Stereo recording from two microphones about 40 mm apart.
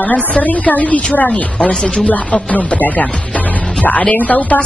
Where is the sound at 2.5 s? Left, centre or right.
Left.